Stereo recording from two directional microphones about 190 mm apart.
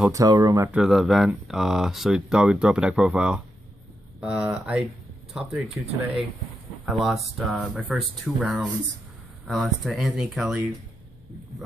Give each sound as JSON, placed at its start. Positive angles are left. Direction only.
{"t": 0.0, "sound": "speech", "side_deg": -15}
{"t": 0.7, "sound": "speech", "side_deg": -5}
{"t": 6.9, "sound": "speech", "side_deg": 0}